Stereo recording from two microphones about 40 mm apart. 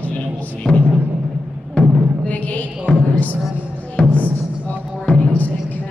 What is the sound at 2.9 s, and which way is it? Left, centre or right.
Music, left.